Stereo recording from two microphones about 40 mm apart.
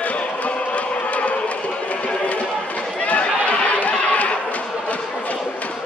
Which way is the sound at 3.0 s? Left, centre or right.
Left.